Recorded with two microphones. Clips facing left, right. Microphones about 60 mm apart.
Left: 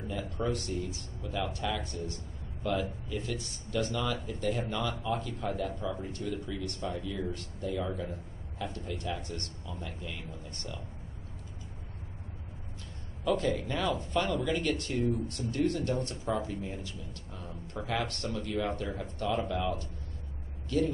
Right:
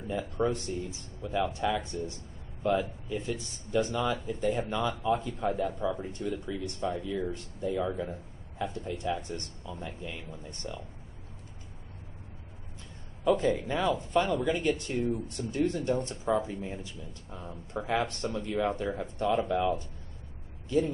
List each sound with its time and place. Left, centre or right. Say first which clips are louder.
0.4 s speech: right 3 dB; right
13.3 s speech: right 3 dB; centre